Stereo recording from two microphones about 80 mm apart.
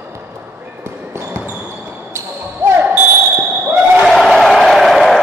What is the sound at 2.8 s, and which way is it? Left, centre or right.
Basketball bounce, right.